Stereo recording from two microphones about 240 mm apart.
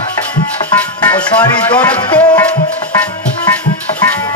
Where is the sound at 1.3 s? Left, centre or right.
Centre.